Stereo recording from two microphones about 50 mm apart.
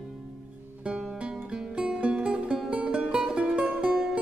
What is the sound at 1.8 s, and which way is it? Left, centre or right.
Music, right.